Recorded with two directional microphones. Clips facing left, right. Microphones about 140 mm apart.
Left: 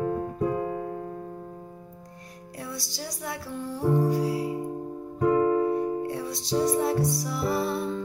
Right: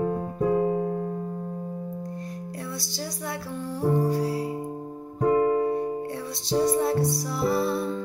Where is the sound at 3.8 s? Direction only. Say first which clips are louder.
Even; 15° right (ahead or behind).